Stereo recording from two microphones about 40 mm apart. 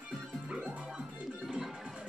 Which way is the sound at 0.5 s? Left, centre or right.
Right.